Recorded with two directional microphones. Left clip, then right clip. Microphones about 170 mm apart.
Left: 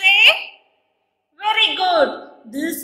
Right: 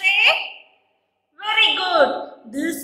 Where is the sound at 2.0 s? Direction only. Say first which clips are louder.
Right 1 dB; 45° left (ahead or behind).